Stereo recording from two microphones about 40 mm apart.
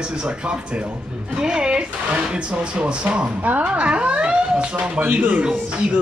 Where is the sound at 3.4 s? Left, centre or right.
Right.